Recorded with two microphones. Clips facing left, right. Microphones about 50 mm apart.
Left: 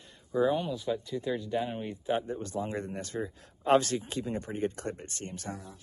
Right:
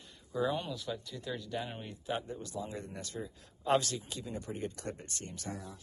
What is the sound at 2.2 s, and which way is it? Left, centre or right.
A man's voice, left.